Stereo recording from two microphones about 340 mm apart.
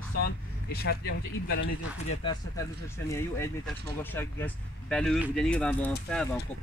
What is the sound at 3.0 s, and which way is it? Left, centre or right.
Speech, centre.